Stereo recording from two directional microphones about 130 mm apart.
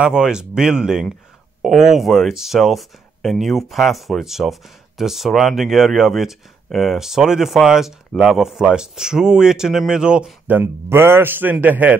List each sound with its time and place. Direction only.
0.0 s speech: 5° right (ahead or behind)
10.5 s a man's voice: 15° right (ahead or behind)